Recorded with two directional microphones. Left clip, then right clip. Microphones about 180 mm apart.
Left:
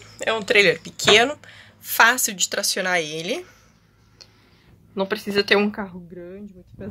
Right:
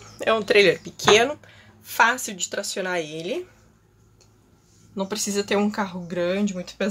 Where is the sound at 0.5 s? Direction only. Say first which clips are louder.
Left 3 dB; 10° right (ahead or behind).